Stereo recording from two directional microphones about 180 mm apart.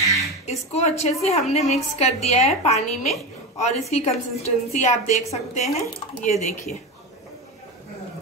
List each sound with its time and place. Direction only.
0.5 s a woman's voice: 35° left (ahead or behind)